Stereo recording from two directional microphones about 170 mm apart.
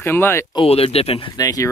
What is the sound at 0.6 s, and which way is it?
Speech, 35° left (ahead or behind).